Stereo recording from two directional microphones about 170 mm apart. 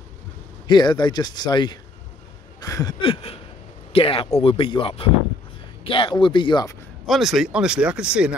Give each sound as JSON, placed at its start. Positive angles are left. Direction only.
{"t": 0.7, "sound": "speech", "side_deg": 25}
{"t": 7.1, "sound": "speech", "side_deg": 0}